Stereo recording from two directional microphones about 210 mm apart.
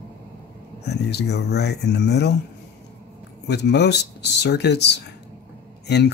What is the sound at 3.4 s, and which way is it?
Speech, 55° left (ahead or behind).